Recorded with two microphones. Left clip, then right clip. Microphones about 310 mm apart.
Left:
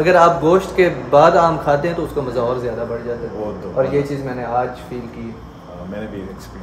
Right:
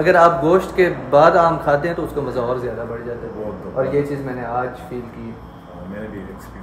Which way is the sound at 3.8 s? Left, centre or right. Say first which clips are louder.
Left 3 dB; centre.